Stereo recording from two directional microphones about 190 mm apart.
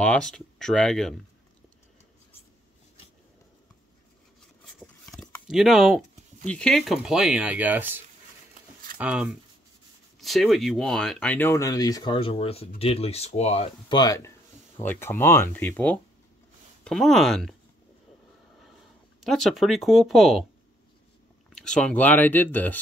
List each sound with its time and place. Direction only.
0.0 s speech: 5° left (ahead or behind)
4.7 s speech: centre (ahead or behind)
19.2 s speech: centre (ahead or behind)
21.5 s speech: 5° left (ahead or behind)